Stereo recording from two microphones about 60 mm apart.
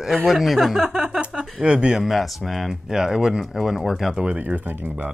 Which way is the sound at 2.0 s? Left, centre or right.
Centre.